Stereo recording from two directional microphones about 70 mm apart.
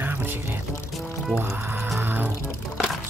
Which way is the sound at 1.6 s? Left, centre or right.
Right.